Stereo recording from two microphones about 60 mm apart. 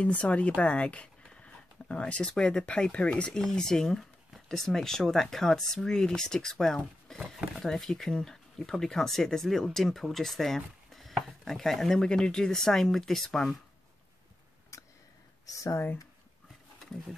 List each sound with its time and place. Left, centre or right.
0.0 s speech: left; by 13.6 s centre
14.7 s a sound: left
15.4 s speech: left